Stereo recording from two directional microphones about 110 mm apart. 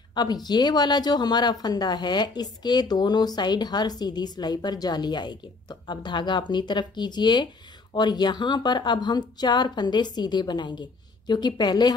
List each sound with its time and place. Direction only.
0.1 s speech: 40° left (ahead or behind)